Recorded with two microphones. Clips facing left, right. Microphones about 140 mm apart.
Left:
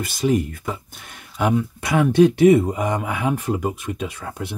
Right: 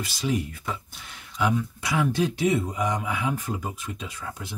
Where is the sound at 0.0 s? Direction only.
50° left (ahead or behind).